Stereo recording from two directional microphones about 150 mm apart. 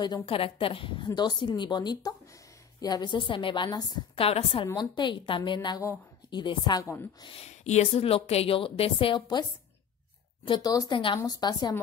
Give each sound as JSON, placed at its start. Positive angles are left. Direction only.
{"t": 0.0, "sound": "a woman's voice", "side_deg": 30}
{"t": 4.2, "sound": "a woman's voice", "side_deg": 40}
{"t": 4.7, "sound": "a woman's voice", "side_deg": 30}
{"t": 7.2, "sound": "a woman's voice", "side_deg": 45}